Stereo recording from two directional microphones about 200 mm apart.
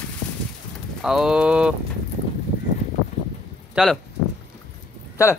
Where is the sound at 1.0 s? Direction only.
Centre (ahead or behind).